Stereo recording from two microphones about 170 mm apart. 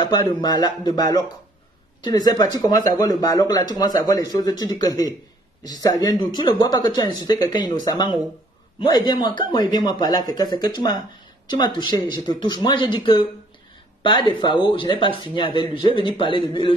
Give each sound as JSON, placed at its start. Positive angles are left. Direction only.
{"t": 0.0, "sound": "speech", "side_deg": 25}